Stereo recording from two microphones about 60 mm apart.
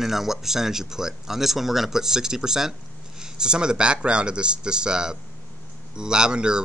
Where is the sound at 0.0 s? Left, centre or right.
Centre.